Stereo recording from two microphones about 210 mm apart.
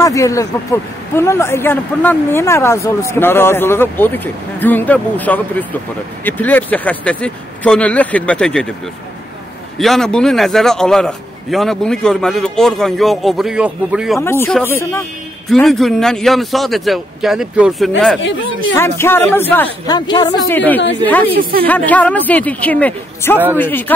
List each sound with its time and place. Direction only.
0.0 s speech: 15° left (ahead or behind)
9.8 s a man's voice: centre (ahead or behind)
14.2 s a man's voice: 10° left (ahead or behind)
18.7 s speech: 10° left (ahead or behind)
20.1 s speech: 20° left (ahead or behind)
20.4 s speech: 10° left (ahead or behind)
21.4 s speech: 45° right (ahead or behind)
21.6 s speech: 5° left (ahead or behind)